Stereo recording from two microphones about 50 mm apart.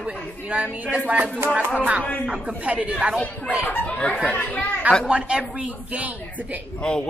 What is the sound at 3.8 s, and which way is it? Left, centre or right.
Speech, left.